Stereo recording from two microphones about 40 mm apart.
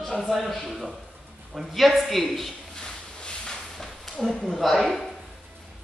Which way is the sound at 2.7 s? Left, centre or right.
Left.